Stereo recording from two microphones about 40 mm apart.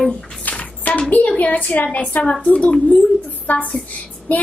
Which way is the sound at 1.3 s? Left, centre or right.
Left.